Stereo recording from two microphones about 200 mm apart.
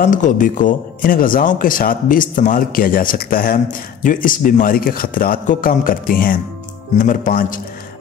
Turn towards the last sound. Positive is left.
turn(degrees=45)  # may be behind; listen again after turning